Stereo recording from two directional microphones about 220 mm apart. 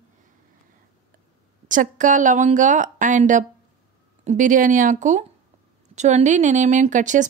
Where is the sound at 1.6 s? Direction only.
35° right (ahead or behind).